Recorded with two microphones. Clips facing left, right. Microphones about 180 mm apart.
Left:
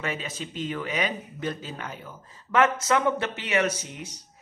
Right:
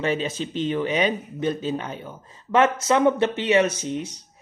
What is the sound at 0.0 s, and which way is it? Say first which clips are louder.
Speech: right 8 dB; 30° right (ahead or behind).